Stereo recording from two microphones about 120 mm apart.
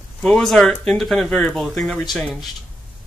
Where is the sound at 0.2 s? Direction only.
5° left (ahead or behind).